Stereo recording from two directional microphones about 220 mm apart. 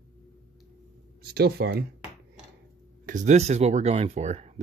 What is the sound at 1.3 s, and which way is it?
Speech, 45° right (ahead or behind).